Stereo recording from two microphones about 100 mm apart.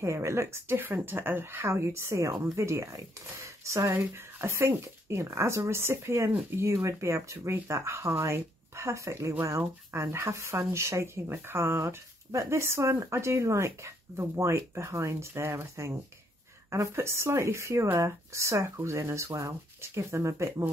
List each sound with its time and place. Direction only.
0.0 s speech: 30° right (ahead or behind)